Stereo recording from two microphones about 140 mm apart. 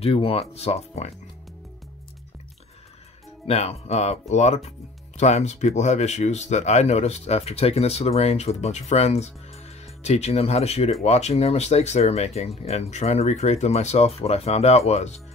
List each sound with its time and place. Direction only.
0.0 s speech: 40° left (ahead or behind)
3.4 s speech: 50° left (ahead or behind)